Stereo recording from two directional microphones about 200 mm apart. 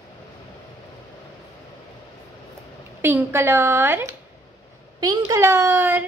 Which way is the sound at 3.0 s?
10° right (ahead or behind).